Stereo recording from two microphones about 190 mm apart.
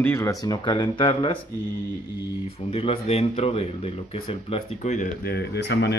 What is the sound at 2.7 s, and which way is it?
Speech, 30° left (ahead or behind).